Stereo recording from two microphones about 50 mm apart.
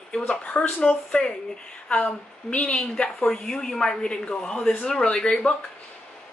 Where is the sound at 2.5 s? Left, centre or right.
Left.